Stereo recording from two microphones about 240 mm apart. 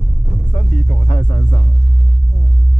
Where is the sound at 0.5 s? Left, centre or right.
Left.